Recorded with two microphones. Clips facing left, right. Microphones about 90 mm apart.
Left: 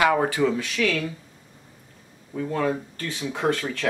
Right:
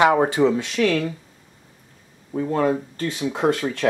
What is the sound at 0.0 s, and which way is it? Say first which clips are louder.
Speech: right 4 dB; 25° right (ahead or behind).